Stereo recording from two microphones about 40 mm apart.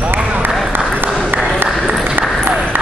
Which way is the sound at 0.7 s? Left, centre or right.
Right.